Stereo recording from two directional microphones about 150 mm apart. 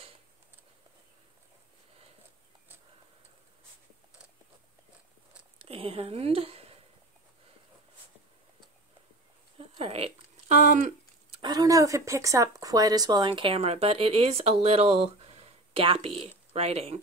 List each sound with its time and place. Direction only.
5.6 s speech: 40° right (ahead or behind)
9.8 s a sound: 40° right (ahead or behind)
11.4 s speech: 25° right (ahead or behind); by 17.0 s 40° right (ahead or behind)